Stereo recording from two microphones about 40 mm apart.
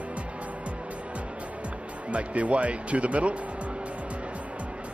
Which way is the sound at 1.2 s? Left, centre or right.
Right.